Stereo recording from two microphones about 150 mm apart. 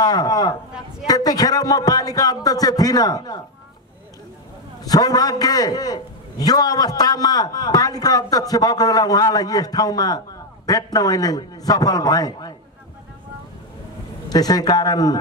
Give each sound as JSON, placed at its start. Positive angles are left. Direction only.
{"t": 0.0, "sound": "a man's voice", "side_deg": 25}
{"t": 4.8, "sound": "a man's voice", "side_deg": 25}
{"t": 14.3, "sound": "a man's voice", "side_deg": 25}